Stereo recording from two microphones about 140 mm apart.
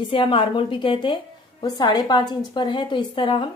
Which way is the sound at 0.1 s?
40° left (ahead or behind).